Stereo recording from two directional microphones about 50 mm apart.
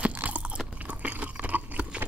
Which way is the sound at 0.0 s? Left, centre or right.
Right.